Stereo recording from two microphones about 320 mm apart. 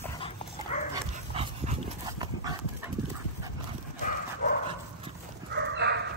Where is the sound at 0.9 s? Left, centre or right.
Centre.